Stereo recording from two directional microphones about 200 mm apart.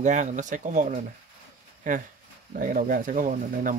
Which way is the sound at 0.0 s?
35° right (ahead or behind).